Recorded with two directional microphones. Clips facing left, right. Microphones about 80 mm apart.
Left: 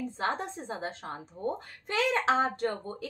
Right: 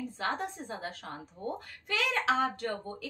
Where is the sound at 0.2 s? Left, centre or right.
Left.